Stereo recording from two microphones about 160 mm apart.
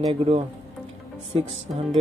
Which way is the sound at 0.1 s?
35° right (ahead or behind).